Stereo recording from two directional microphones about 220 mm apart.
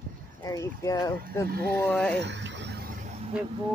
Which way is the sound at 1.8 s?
5° left (ahead or behind).